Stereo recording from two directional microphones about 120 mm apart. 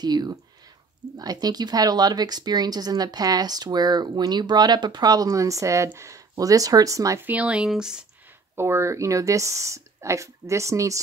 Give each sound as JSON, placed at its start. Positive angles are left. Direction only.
{"t": 0.0, "sound": "speech", "side_deg": -35}
{"t": 7.2, "sound": "speech", "side_deg": -10}
{"t": 8.5, "sound": "speech", "side_deg": -20}